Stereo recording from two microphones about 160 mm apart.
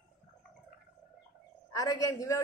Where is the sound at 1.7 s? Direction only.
20° left (ahead or behind).